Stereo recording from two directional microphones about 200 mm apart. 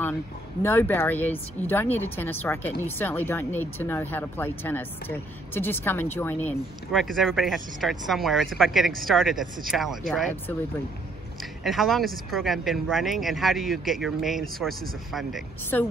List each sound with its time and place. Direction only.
0.6 s speech: 10° left (ahead or behind)
11.6 s speech: centre (ahead or behind)